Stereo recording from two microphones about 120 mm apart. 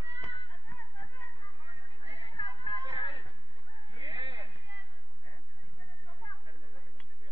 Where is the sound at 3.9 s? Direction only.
40° right (ahead or behind).